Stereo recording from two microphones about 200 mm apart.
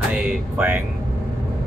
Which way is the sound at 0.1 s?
5° right (ahead or behind).